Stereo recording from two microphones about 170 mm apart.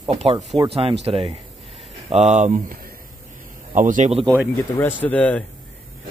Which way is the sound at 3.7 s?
50° right (ahead or behind).